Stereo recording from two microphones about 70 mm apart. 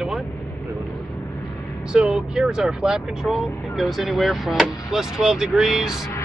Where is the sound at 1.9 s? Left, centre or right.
Centre.